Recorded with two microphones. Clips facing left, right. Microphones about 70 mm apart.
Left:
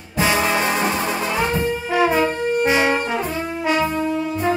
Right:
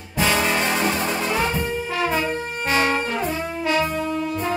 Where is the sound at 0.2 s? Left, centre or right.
Centre.